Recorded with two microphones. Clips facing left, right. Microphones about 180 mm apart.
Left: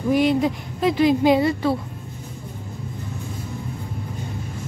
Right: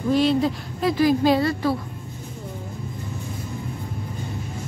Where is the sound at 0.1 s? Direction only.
15° left (ahead or behind).